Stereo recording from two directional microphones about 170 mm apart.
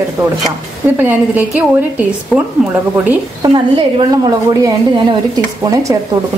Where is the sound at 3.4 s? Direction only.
25° right (ahead or behind).